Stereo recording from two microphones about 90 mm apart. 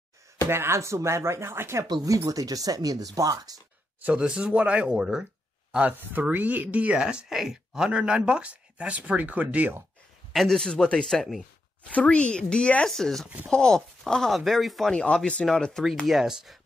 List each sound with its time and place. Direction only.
0.5 s speech: 30° right (ahead or behind)
1.9 s speech: 40° right (ahead or behind)
4.0 s speech: 10° right (ahead or behind)
10.3 s speech: 5° left (ahead or behind)
16.1 s speech: 5° right (ahead or behind)